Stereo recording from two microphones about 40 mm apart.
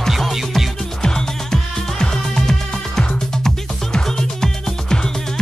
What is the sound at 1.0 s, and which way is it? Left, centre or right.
Music, centre.